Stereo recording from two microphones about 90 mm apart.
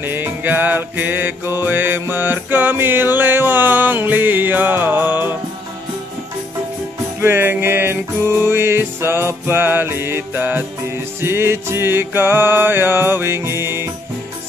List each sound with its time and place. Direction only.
0.0 s music: 25° right (ahead or behind)
7.2 s music: 25° right (ahead or behind)